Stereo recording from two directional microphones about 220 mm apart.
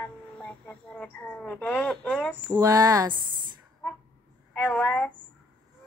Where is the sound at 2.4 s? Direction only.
15° right (ahead or behind).